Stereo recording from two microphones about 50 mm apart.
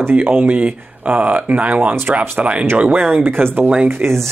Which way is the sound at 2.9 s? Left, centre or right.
Right.